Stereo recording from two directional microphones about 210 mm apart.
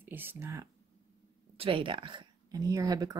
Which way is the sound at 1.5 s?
25° right (ahead or behind).